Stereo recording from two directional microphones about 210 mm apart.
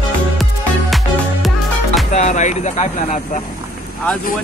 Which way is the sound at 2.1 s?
35° left (ahead or behind).